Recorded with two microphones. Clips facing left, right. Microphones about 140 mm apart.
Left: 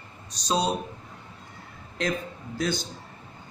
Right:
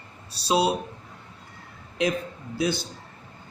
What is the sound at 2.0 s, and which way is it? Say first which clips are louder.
Speech: right 3 dB; 10° right (ahead or behind).